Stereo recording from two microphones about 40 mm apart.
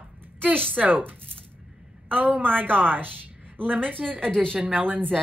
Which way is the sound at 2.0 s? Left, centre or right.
Right.